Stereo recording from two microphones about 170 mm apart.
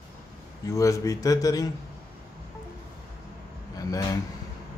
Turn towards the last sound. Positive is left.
turn(degrees=20)  # may be behind; listen again after turning